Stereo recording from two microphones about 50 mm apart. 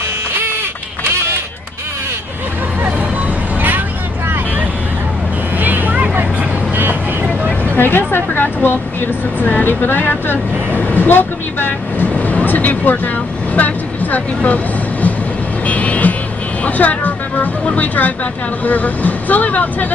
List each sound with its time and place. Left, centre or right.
1.0 s run: right
5.6 s vehicle: right
7.7 s speech: left
14.1 s speech: left
15.6 s vehicle: left
17.7 s speech: left